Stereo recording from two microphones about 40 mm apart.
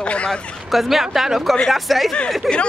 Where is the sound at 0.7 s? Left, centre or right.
Centre.